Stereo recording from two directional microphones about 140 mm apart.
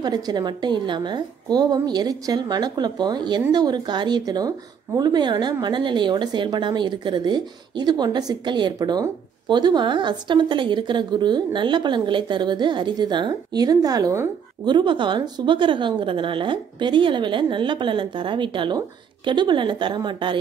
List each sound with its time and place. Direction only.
0.0 s a woman's voice: 30° right (ahead or behind)